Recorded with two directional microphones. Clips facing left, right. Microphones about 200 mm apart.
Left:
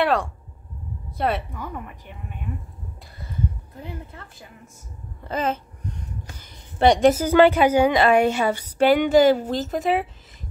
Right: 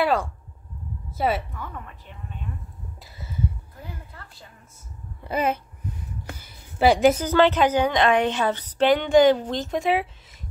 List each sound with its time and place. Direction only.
0.0 s a woman's voice: centre (ahead or behind)
1.5 s a woman's voice: 15° left (ahead or behind)
3.8 s a woman's voice: 20° left (ahead or behind)
5.2 s babbling: 10° right (ahead or behind)
6.3 s a sound: 5° right (ahead or behind)
7.2 s a woman's voice: 10° left (ahead or behind)